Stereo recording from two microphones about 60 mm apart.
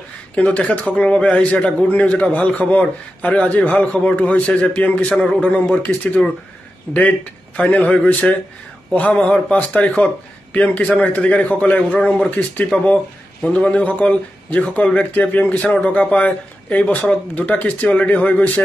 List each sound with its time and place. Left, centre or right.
0.4 s a man's voice: left
12.0 s speech: centre
12.3 s a man's voice: left